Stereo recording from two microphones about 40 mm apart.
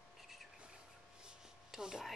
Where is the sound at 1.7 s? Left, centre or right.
Centre.